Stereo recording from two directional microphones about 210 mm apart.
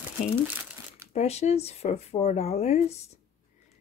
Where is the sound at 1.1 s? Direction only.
30° left (ahead or behind).